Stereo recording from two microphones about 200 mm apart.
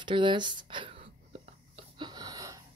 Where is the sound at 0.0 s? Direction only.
25° right (ahead or behind).